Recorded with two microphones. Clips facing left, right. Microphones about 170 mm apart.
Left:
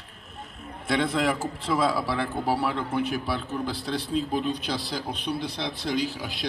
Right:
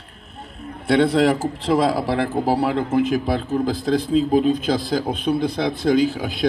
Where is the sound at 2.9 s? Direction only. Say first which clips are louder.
Right 8 dB; 90° right.